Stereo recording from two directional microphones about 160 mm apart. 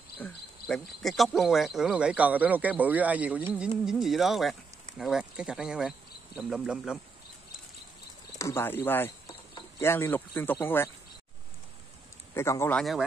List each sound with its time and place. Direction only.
0.2 s cricket: 5° left (ahead or behind)
3.8 s speech: centre (ahead or behind)
8.4 s speech: 15° left (ahead or behind)
12.4 s speech: 15° left (ahead or behind)
12.7 s speech: centre (ahead or behind)